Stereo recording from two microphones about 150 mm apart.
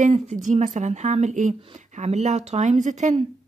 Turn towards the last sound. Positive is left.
turn(degrees=-55)  # may be behind; listen again after turning